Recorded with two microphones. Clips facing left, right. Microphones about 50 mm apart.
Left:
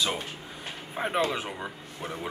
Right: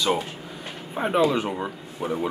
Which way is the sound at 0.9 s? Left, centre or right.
Centre.